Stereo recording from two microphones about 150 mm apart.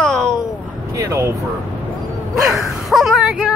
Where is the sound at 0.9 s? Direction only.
20° right (ahead or behind).